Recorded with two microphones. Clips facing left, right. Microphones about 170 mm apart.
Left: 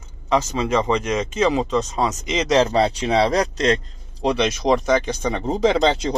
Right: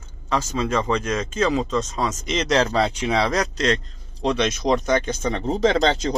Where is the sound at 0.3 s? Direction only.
15° left (ahead or behind).